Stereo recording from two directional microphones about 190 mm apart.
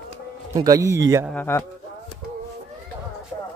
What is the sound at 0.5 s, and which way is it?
Speech, 20° right (ahead or behind).